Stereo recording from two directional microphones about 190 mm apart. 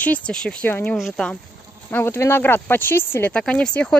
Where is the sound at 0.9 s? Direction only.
Centre (ahead or behind).